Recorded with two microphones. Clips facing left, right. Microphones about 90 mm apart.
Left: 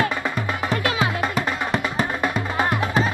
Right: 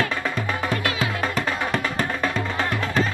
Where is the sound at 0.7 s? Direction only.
25° left (ahead or behind).